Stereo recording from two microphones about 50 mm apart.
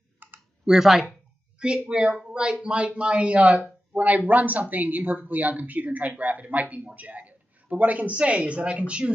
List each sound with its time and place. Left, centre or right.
0.2 s clicking: right
0.7 s speech: centre